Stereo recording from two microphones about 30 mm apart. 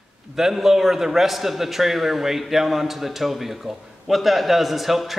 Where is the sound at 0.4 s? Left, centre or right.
Centre.